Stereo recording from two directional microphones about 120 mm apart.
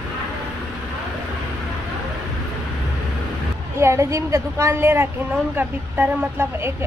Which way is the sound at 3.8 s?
25° right (ahead or behind).